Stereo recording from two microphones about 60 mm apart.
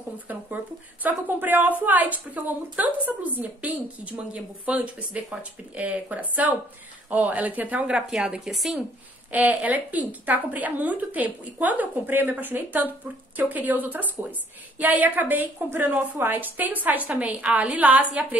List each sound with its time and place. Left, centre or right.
0.3 s a woman's voice: right
8.1 s speech: centre
9.3 s a woman's voice: right